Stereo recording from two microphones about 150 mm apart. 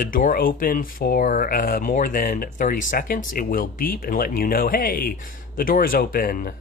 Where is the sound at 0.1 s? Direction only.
65° left (ahead or behind).